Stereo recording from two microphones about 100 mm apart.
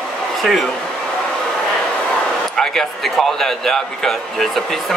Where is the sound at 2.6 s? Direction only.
Centre (ahead or behind).